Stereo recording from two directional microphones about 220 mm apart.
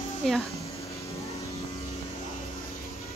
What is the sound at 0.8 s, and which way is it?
Music, 15° left (ahead or behind).